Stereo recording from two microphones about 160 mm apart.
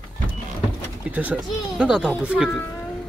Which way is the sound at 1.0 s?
10° right (ahead or behind).